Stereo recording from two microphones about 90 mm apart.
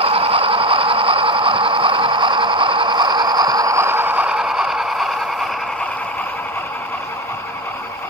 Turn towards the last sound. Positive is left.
turn(degrees=15)  # may be behind; listen again after turning